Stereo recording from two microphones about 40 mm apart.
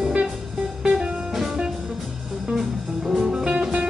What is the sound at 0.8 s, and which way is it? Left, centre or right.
Music, right.